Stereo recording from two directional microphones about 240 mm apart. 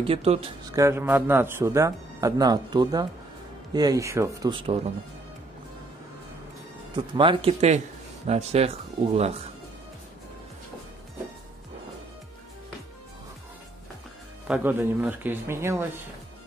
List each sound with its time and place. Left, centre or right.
0.0 s speech: right
0.7 s speech: centre
7.2 s speech: right
14.5 s speech: centre